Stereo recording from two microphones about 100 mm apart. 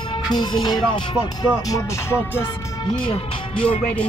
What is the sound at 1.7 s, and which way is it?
Music, 25° left (ahead or behind).